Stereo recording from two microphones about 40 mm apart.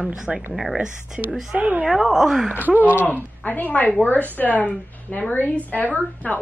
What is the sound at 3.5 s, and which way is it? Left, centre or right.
A woman's voice, left.